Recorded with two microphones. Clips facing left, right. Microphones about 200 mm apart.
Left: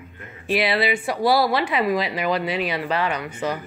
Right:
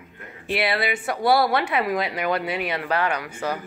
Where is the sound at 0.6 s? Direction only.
25° left (ahead or behind).